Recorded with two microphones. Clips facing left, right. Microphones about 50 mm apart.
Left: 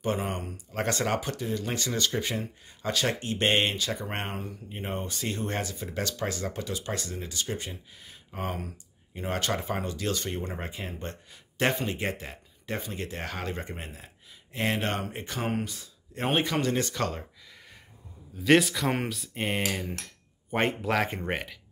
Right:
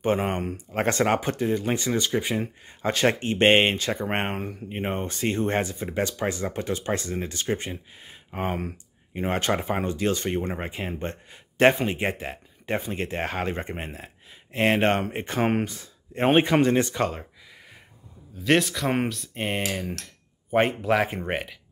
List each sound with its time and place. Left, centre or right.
0.0 s speech: right; by 2.4 s centre
2.8 s speech: right
6.6 s speech: right
18.4 s speech: centre